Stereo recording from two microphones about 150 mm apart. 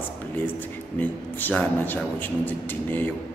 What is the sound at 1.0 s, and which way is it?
Speech, 10° left (ahead or behind).